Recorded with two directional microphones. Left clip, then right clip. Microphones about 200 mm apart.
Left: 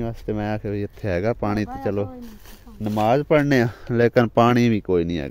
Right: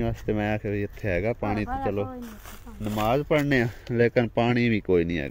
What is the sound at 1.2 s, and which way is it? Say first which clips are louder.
Speech: left 5 dB; 35° left (ahead or behind).